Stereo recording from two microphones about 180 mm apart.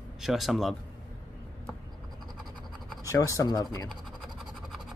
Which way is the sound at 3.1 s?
20° left (ahead or behind).